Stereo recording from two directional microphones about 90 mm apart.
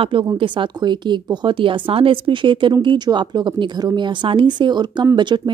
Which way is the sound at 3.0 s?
55° right (ahead or behind).